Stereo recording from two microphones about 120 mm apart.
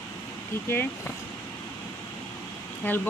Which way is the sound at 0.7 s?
15° left (ahead or behind).